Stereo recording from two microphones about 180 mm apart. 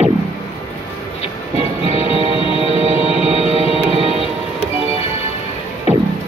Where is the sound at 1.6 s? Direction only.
35° left (ahead or behind).